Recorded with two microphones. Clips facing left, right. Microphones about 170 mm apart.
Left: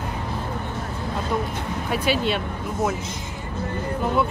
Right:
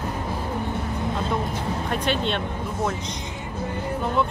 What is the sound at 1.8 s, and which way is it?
Speech, 5° left (ahead or behind).